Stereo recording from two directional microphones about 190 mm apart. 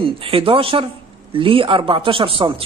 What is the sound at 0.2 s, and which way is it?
A man's voice, 30° right (ahead or behind).